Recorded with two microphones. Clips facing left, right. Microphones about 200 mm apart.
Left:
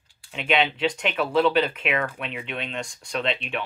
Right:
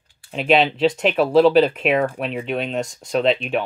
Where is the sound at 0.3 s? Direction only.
35° right (ahead or behind).